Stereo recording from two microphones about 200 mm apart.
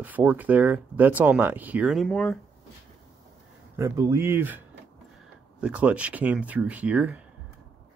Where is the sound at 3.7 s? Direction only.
15° right (ahead or behind).